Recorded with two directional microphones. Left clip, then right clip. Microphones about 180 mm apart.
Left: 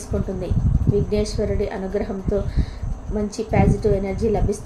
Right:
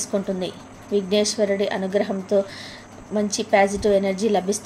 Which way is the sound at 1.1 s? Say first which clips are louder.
Right 3 dB; 20° right (ahead or behind).